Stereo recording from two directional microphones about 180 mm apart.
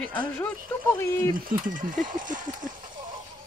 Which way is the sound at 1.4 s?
50° right (ahead or behind).